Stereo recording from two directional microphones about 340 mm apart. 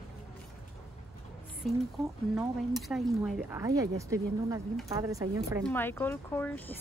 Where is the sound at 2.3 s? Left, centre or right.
Centre.